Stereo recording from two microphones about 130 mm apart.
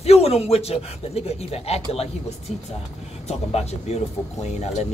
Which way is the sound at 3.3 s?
55° left (ahead or behind).